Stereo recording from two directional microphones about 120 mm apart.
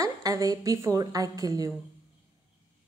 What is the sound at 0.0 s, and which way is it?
A woman's voice, 30° right (ahead or behind).